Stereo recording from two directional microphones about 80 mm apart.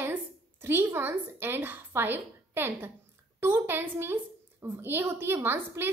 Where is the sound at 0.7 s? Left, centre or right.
Right.